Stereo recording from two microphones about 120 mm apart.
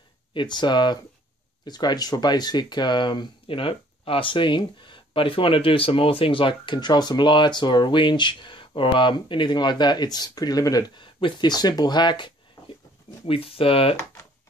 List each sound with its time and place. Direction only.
0.3 s speech: 40° left (ahead or behind)
11.0 s speech: 45° left (ahead or behind)
13.3 s speech: 50° left (ahead or behind)